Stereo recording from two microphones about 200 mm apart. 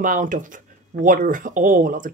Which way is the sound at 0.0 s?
40° right (ahead or behind).